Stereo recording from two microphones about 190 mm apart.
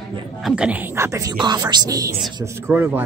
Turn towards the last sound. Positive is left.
turn(degrees=-10)  # may be behind; listen again after turning